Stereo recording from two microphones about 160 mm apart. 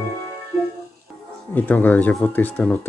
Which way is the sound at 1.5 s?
10° left (ahead or behind).